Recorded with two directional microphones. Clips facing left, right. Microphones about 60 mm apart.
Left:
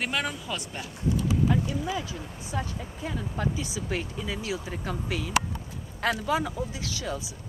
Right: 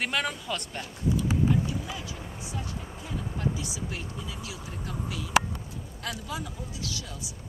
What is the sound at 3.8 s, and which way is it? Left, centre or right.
Speech, left.